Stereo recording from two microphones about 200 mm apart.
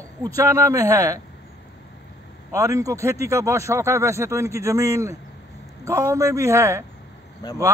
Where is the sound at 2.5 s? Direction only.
15° right (ahead or behind).